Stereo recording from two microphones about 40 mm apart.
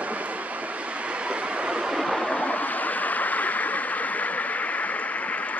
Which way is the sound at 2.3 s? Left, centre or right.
Left.